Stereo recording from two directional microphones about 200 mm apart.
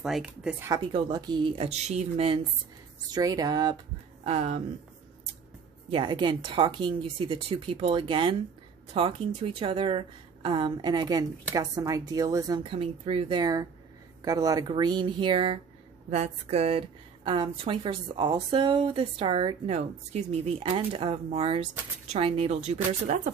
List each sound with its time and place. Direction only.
0.0 s speech: 5° right (ahead or behind)
0.7 s speech: 25° right (ahead or behind)
3.1 s speech: 20° right (ahead or behind)
4.2 s speech: 35° right (ahead or behind)
5.9 s speech: 25° right (ahead or behind)